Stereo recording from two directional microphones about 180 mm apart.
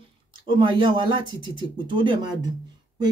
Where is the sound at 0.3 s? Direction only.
25° right (ahead or behind).